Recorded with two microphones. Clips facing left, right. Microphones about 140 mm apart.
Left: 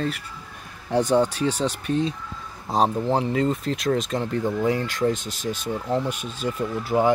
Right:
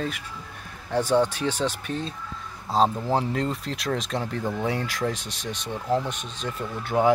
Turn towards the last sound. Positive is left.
turn(degrees=0)  # may be behind; listen again after turning